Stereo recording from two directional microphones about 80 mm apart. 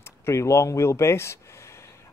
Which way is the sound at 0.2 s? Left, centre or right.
Left.